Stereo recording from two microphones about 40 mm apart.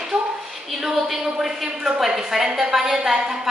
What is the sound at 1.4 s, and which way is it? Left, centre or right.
A woman's voice, centre.